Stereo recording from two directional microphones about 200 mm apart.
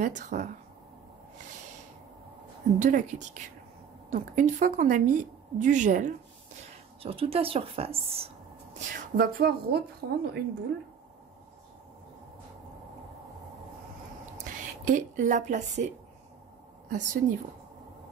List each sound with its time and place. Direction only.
0.0 s a woman's voice: 35° right (ahead or behind)
2.8 s a woman's voice: 40° right (ahead or behind)
7.0 s a woman's voice: 30° right (ahead or behind)
8.7 s a woman's voice: 45° right (ahead or behind)
14.4 s speech: 40° right (ahead or behind)
16.9 s a woman's voice: 40° right (ahead or behind)